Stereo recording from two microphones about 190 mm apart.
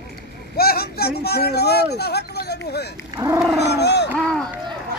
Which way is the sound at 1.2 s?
55° left (ahead or behind).